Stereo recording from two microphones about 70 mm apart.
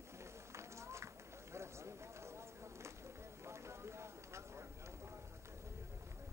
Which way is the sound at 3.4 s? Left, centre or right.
Right.